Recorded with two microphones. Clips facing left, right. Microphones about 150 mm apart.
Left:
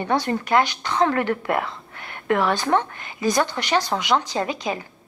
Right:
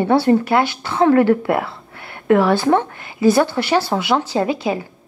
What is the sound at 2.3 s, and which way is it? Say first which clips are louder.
Speech: right 6 dB; 15° right (ahead or behind).